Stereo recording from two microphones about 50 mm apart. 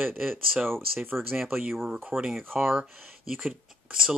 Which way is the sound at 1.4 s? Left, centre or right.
Centre.